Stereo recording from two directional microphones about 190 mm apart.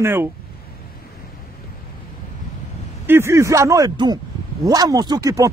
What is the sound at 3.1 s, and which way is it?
Speech, 15° right (ahead or behind).